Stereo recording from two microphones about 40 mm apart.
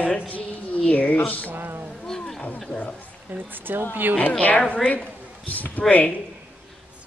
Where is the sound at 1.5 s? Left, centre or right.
Right.